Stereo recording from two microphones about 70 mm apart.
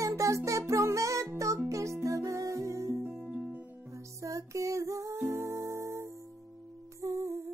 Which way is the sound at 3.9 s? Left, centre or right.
Right.